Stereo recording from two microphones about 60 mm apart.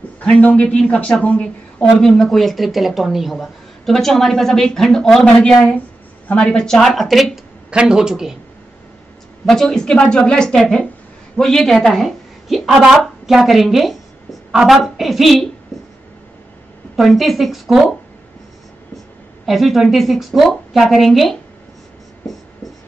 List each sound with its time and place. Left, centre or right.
0.2 s a woman's voice: left
2.0 s a woman's voice: centre
7.7 s a man's voice: centre
9.5 s a woman's voice: centre
16.9 s speech: centre
19.4 s speech: centre